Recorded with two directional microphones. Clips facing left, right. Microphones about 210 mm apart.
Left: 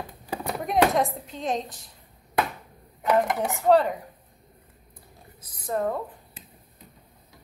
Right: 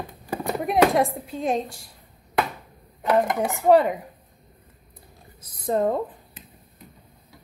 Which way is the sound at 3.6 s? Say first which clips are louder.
Right 3 dB; 15° right (ahead or behind).